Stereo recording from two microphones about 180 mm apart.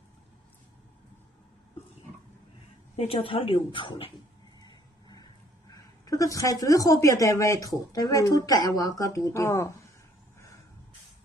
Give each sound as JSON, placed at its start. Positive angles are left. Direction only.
{"t": 3.0, "sound": "speech", "side_deg": 30}
{"t": 4.6, "sound": "vehicle", "side_deg": 25}
{"t": 5.7, "sound": "speech", "side_deg": 20}